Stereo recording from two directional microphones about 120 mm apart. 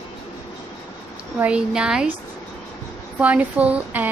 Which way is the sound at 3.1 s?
10° right (ahead or behind).